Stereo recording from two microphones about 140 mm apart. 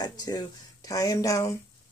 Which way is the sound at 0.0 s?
30° left (ahead or behind).